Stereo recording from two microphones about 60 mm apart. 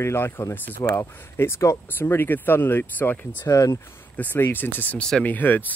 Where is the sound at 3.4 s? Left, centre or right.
Left.